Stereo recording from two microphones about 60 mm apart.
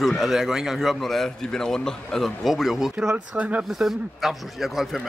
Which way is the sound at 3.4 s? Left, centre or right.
Right.